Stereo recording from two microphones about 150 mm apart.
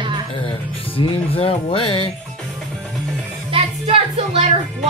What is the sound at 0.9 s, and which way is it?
Speech, 35° left (ahead or behind).